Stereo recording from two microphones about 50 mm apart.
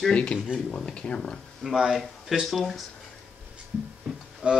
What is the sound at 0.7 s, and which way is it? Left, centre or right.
Speech, left.